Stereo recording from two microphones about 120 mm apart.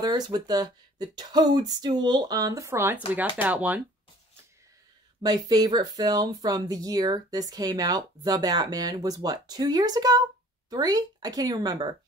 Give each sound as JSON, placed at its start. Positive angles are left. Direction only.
{"t": 0.0, "sound": "speech", "side_deg": -35}
{"t": 5.2, "sound": "speech", "side_deg": -30}